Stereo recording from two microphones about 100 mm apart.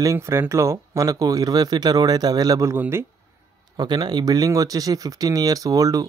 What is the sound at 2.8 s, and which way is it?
Speech, 25° right (ahead or behind).